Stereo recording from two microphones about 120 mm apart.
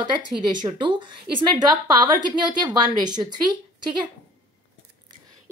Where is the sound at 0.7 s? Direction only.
40° right (ahead or behind).